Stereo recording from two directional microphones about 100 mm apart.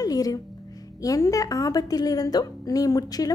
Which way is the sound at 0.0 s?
40° left (ahead or behind).